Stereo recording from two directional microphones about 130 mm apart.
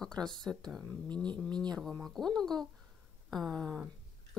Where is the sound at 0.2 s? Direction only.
5° left (ahead or behind).